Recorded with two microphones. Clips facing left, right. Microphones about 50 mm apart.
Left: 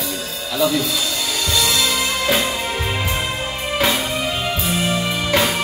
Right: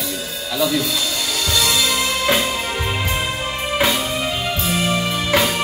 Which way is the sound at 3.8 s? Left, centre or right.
Centre.